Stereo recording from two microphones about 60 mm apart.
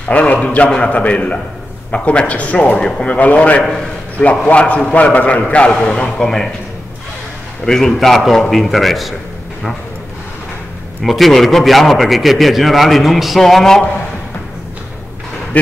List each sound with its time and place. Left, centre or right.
0.1 s a man's voice: left
7.6 s a man's voice: centre
11.1 s a man's voice: centre
15.5 s speech: left